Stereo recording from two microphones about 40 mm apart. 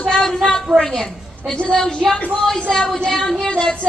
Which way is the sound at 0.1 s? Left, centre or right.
Centre.